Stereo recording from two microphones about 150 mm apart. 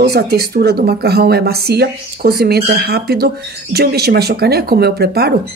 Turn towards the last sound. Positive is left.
turn(degrees=-90)